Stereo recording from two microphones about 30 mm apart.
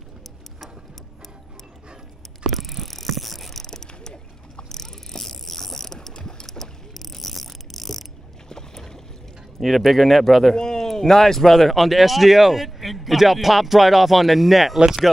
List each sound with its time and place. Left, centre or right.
2.4 s mechanisms: centre; by 4.6 s left
4.6 s vehicle: centre
6.1 s a sound: left
6.4 s ratchet: centre
8.5 s boat: centre
9.6 s speech: centre
10.5 s a sound: left
10.9 s speech: centre